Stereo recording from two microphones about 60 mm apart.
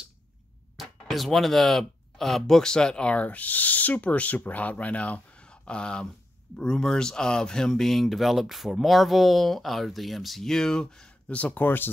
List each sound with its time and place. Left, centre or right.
0.7 s speech: centre
11.3 s speech: left